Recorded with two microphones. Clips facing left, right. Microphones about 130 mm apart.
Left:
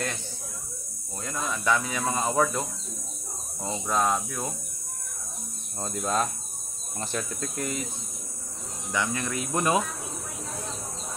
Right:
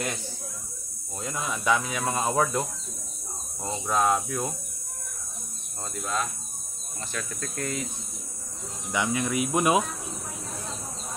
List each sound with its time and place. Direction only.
1.2 s speech: 15° right (ahead or behind)
3.6 s cricket: centre (ahead or behind)
5.9 s speech: 35° left (ahead or behind)
7.3 s speech: 15° left (ahead or behind)
8.9 s speech: 15° right (ahead or behind)